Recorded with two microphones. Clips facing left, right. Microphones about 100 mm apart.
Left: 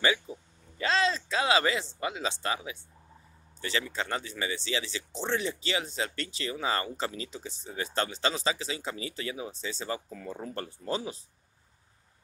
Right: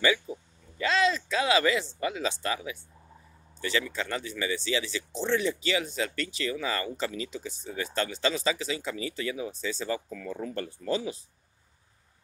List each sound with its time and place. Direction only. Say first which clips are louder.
0.7 s speech: right 2 dB; 30° left (ahead or behind)